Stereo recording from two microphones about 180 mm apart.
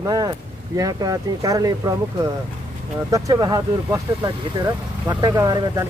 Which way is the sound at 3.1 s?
20° right (ahead or behind).